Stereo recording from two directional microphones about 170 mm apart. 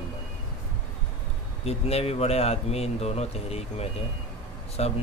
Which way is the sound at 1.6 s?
35° left (ahead or behind).